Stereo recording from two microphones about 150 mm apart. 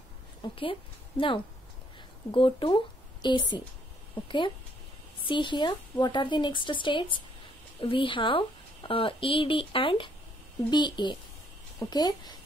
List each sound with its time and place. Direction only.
0.4 s a woman's voice: 35° left (ahead or behind)
5.3 s speech: 30° left (ahead or behind)